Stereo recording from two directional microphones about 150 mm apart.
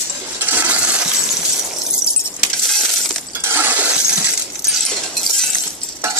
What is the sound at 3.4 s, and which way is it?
Shatter, 15° right (ahead or behind).